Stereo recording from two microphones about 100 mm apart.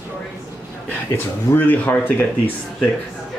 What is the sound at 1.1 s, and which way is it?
Speech, 20° left (ahead or behind).